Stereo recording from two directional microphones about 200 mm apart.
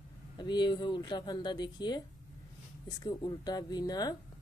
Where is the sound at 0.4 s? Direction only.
20° left (ahead or behind).